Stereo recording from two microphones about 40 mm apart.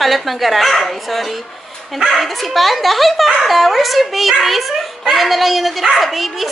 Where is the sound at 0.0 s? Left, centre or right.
Centre.